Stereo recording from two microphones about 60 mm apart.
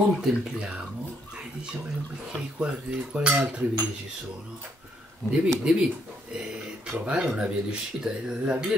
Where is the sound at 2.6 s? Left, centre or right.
Centre.